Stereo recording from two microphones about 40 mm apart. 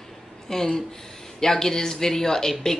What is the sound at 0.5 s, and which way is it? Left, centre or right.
Speech, centre.